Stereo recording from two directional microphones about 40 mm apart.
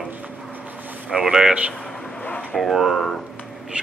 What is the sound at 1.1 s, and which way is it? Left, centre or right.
A man's voice, centre.